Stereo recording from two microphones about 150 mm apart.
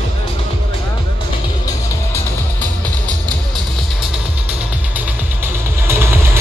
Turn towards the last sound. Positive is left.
turn(degrees=-15)  # may be behind; listen again after turning